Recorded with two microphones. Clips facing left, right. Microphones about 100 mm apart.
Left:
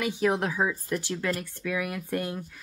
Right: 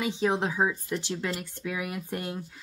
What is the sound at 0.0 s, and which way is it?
Speech, 20° right (ahead or behind).